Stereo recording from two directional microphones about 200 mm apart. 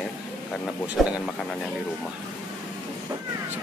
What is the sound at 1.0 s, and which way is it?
Speech, 5° right (ahead or behind).